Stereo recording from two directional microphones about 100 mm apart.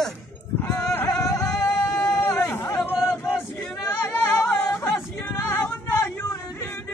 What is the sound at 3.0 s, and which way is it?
Male singing, 25° left (ahead or behind).